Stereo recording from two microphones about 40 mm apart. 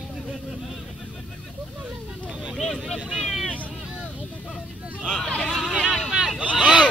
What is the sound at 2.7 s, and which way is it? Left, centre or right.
Vehicle, centre.